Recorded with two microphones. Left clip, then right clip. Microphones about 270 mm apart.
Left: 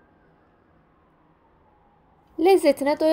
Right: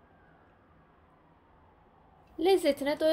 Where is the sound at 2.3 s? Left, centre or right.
Left.